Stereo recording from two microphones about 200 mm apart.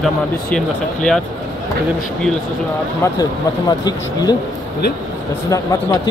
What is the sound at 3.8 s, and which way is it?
Speech, 20° left (ahead or behind).